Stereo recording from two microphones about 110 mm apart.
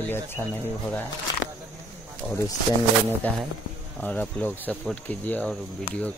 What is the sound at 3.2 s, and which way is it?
Speech, 15° left (ahead or behind).